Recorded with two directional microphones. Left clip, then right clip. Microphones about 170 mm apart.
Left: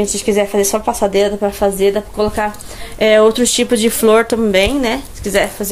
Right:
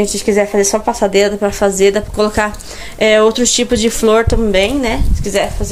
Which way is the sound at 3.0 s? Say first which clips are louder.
Even; centre (ahead or behind).